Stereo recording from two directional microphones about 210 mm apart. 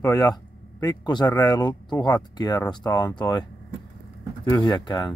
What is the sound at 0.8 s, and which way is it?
Speech, 20° left (ahead or behind).